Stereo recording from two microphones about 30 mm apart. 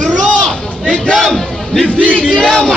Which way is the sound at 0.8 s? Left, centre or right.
Left.